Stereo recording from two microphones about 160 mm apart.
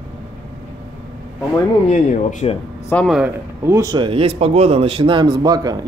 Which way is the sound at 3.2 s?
15° right (ahead or behind).